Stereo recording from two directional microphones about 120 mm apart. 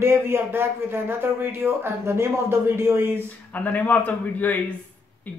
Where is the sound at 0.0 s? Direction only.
20° right (ahead or behind).